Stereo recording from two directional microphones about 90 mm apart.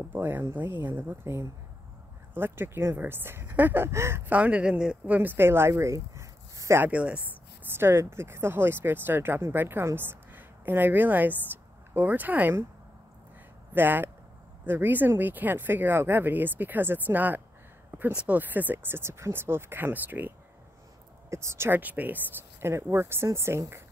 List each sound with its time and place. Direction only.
0.1 s speech: 25° right (ahead or behind)
4.3 s speech: 15° right (ahead or behind); by 6.8 s 35° right (ahead or behind)
6.8 s speech: 15° right (ahead or behind)
7.7 s speech: 30° right (ahead or behind)
13.7 s speech: 20° right (ahead or behind)
21.3 s speech: 30° right (ahead or behind)